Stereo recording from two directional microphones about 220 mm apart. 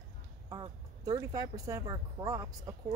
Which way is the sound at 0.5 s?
15° right (ahead or behind).